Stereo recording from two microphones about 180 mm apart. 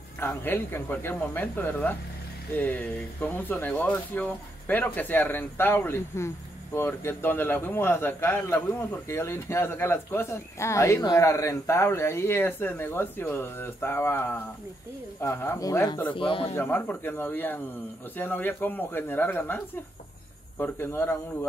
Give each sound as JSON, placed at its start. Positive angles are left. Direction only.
{"t": 0.2, "sound": "speech", "side_deg": 15}
{"t": 16.2, "sound": "speech", "side_deg": 30}
{"t": 16.5, "sound": "speech", "side_deg": 10}